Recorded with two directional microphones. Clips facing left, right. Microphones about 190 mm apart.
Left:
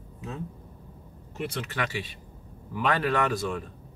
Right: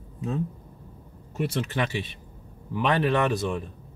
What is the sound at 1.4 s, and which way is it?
Speech, 30° right (ahead or behind).